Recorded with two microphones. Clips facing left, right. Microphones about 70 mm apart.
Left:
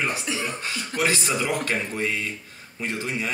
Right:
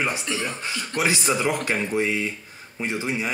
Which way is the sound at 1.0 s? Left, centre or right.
Centre.